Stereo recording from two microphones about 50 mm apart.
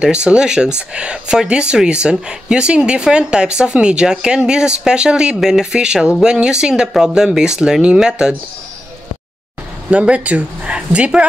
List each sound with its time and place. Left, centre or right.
0.0 s speech: centre
9.8 s speech: right